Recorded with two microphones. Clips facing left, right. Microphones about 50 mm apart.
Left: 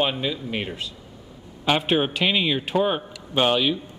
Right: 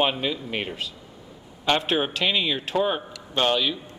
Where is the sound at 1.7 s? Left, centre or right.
Centre.